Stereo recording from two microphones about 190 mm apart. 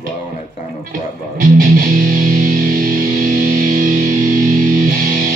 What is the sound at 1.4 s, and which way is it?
Music, 50° right (ahead or behind).